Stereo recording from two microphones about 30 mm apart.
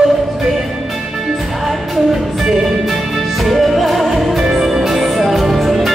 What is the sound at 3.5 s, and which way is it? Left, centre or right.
Music, centre.